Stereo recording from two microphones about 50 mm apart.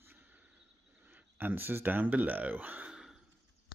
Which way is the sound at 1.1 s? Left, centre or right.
Right.